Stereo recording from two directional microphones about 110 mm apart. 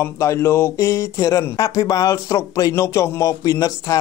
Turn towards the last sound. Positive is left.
turn(degrees=30)  # may be behind; listen again after turning